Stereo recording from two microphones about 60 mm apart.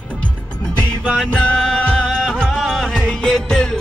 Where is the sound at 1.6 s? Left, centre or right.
Centre.